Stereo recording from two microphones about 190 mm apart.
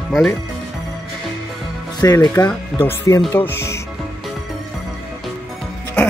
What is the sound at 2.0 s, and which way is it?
Speech, 20° left (ahead or behind).